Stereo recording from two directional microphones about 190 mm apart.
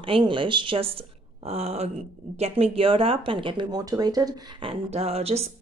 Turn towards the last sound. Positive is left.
turn(degrees=-35)  # may be behind; listen again after turning